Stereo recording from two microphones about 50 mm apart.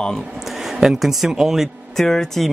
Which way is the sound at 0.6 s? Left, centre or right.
Centre.